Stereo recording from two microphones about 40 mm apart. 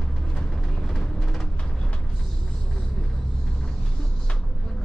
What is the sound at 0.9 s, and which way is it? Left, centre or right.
Music, centre.